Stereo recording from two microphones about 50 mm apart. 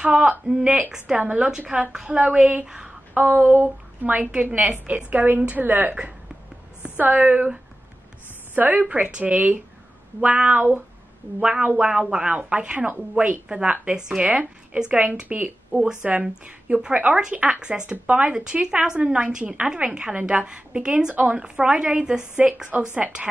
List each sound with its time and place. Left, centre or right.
0.0 s a woman's voice: centre
2.6 s speech: centre
3.3 s a sound: right
4.0 s a woman's voice: right
7.0 s a woman's voice: right
8.5 s a woman's voice: right; by 14.2 s centre
14.2 s a woman's voice: right
15.7 s a woman's voice: centre
22.7 s a woman's voice: right